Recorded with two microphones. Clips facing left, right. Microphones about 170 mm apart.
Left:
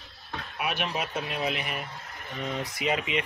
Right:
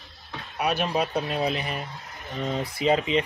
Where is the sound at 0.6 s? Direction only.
40° right (ahead or behind).